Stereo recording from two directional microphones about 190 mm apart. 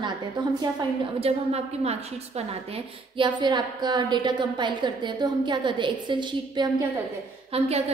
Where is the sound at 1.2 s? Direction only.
35° right (ahead or behind).